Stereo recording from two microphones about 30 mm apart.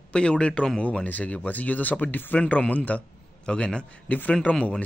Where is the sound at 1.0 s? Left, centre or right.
Left.